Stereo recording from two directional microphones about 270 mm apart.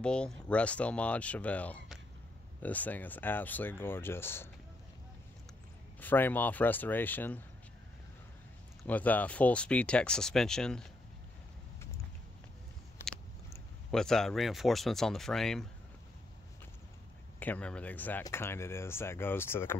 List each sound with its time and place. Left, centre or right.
0.0 s speech: centre
5.9 s speech: centre
8.8 s speech: centre
13.0 s speech: centre
17.4 s speech: centre